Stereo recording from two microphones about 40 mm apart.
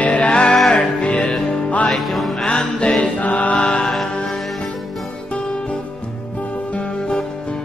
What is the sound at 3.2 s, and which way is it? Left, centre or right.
Chant, left.